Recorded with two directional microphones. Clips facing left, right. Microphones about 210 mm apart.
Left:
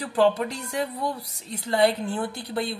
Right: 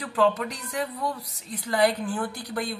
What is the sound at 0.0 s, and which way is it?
Speech, 30° left (ahead or behind).